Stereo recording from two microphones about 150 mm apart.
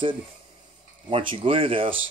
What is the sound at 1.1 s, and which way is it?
Speech, 40° right (ahead or behind).